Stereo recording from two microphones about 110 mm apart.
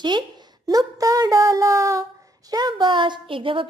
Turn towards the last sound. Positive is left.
turn(degrees=-50)  # may be behind; listen again after turning